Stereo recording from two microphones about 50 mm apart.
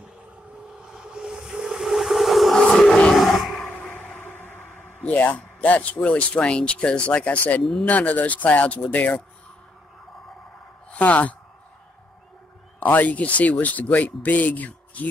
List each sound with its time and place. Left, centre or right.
0.8 s vehicle: centre
3.2 s roar: centre
3.6 s a sound: left
4.2 s a sound: left
5.1 s speech: left
10.9 s speech: left
12.8 s speech: left